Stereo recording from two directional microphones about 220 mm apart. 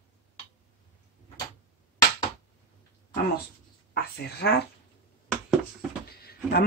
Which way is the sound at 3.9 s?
45° left (ahead or behind).